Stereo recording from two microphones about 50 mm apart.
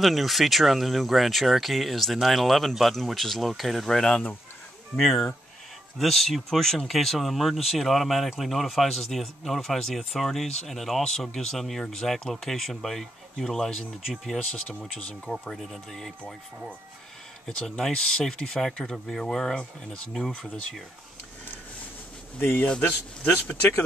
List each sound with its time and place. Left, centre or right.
0.0 s speech: centre
15.5 s speech: centre
22.4 s a man's voice: left
22.8 s speech: left